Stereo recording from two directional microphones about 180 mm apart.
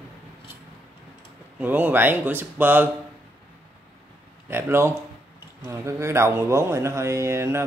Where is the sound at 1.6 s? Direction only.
10° right (ahead or behind).